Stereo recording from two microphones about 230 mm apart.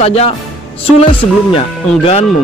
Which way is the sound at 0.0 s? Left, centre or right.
Left.